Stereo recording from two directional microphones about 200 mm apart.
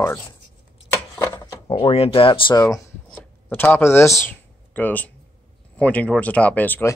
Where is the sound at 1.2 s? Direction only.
15° left (ahead or behind).